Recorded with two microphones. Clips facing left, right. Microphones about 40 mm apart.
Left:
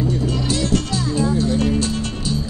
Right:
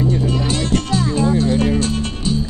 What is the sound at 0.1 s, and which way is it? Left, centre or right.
Music, right.